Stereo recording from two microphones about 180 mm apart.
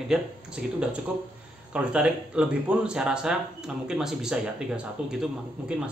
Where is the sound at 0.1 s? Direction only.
5° right (ahead or behind).